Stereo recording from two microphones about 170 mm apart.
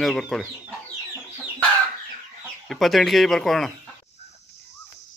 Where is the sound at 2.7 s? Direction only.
Centre (ahead or behind).